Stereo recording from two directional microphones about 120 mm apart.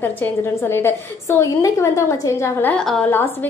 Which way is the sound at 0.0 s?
20° left (ahead or behind).